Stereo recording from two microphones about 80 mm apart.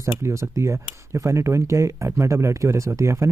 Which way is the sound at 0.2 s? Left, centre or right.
Right.